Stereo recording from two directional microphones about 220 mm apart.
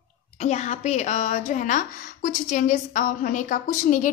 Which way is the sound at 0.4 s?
30° left (ahead or behind).